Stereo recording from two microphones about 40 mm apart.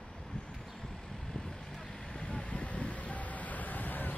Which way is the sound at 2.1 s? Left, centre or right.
Left.